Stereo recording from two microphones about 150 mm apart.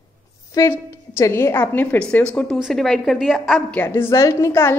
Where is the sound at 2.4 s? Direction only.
Centre (ahead or behind).